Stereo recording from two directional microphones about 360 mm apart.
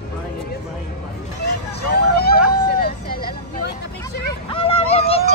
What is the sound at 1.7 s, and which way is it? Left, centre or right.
Vehicle, left.